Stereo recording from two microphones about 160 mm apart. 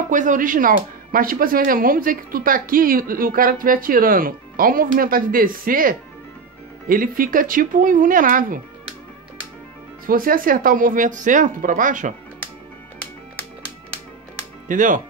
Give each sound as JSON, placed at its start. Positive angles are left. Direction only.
{"t": 0.1, "sound": "speech", "side_deg": -55}
{"t": 10.0, "sound": "speech", "side_deg": -60}
{"t": 14.7, "sound": "speech", "side_deg": -55}